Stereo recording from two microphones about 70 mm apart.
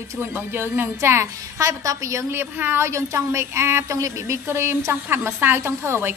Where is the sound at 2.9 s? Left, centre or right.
Right.